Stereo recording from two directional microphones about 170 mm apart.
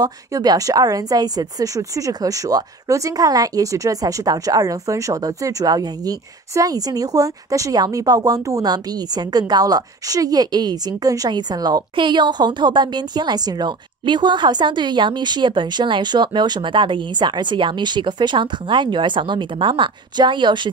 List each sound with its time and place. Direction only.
0.0 s speech: 25° right (ahead or behind)